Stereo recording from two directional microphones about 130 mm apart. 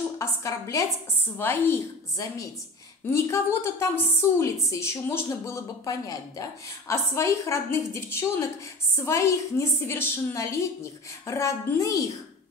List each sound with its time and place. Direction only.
0.2 s a woman's voice: 25° left (ahead or behind)